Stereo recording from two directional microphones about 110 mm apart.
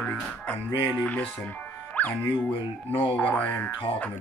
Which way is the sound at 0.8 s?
15° left (ahead or behind).